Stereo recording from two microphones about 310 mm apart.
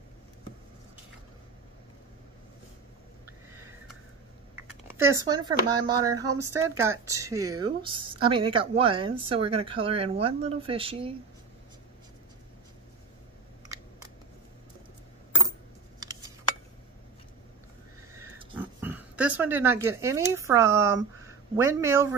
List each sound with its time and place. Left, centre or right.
4.6 s speech: centre
16.0 s a sound: centre
18.1 s oink: centre
21.5 s speech: centre